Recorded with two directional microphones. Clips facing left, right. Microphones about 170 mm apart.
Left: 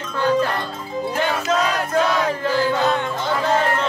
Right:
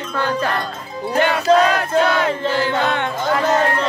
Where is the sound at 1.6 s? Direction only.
70° right (ahead or behind).